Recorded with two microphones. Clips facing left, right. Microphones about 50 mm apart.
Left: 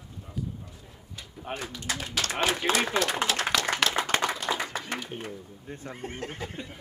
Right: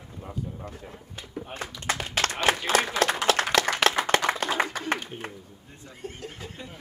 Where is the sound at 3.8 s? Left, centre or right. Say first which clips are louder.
Right 3 dB; right.